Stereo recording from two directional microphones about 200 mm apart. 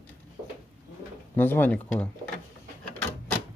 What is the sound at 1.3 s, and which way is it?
Speech, 10° left (ahead or behind).